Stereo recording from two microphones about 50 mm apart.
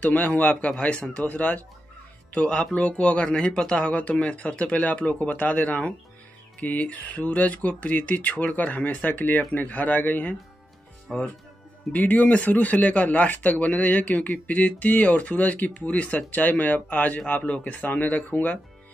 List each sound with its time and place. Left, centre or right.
0.0 s speech: left
11.9 s speech: left
18.3 s speech: left